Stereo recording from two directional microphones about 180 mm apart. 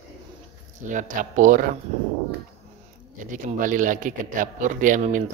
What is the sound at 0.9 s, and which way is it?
Speech, 45° right (ahead or behind).